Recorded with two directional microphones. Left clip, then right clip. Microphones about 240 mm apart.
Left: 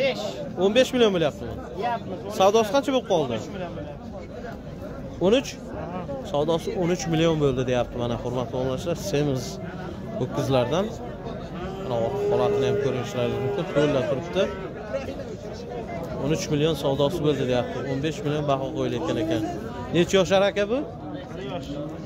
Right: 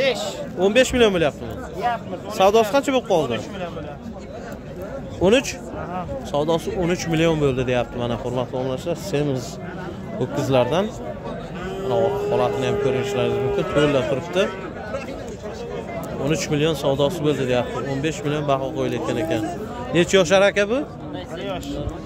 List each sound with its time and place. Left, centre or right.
0.0 s a sound: right
0.6 s a man's voice: centre
2.3 s a man's voice: centre
5.2 s a man's voice: centre
11.9 s a man's voice: centre
16.3 s a man's voice: centre